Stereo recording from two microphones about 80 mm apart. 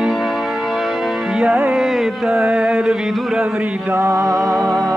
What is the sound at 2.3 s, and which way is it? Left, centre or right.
Music, centre.